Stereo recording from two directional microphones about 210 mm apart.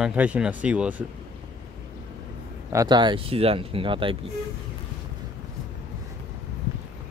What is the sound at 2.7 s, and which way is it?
Speech, 20° right (ahead or behind).